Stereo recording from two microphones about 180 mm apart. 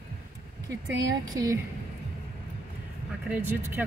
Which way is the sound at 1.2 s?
20° right (ahead or behind).